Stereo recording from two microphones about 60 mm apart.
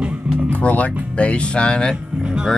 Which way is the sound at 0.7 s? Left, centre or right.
Left.